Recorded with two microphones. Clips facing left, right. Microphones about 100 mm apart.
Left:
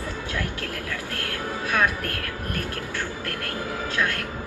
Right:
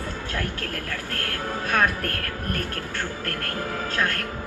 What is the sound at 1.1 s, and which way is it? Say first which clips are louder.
Speech: right 3 dB; 45° right (ahead or behind).